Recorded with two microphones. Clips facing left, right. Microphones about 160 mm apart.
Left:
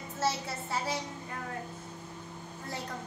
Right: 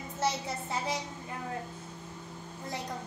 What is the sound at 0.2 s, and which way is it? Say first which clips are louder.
Speech: even; 20° right (ahead or behind).